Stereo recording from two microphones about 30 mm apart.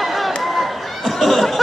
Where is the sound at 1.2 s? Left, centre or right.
Centre.